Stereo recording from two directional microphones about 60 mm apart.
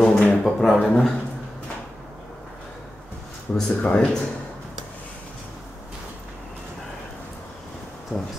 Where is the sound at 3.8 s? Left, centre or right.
Left.